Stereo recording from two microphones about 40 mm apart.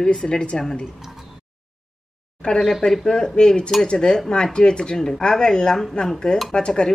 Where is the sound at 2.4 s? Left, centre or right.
Centre.